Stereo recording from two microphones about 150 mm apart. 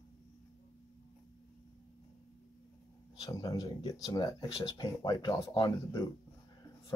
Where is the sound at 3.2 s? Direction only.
25° left (ahead or behind).